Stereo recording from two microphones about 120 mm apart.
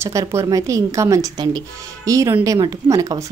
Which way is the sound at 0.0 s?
25° right (ahead or behind).